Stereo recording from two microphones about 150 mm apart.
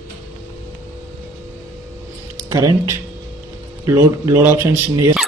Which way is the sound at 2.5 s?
20° right (ahead or behind).